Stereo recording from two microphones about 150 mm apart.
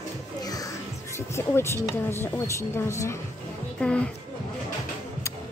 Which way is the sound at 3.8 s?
5° left (ahead or behind).